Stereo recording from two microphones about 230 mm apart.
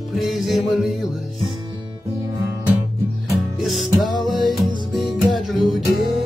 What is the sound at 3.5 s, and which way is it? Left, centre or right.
Music, centre.